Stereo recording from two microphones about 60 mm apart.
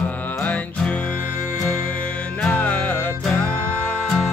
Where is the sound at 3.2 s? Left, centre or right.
Centre.